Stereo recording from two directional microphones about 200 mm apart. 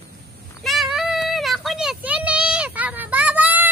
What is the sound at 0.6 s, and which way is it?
Child singing, centre (ahead or behind).